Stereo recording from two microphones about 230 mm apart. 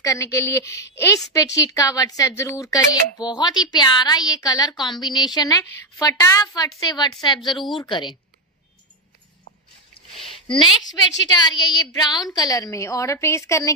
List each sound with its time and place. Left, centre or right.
0.0 s a woman's voice: centre
10.5 s a woman's voice: centre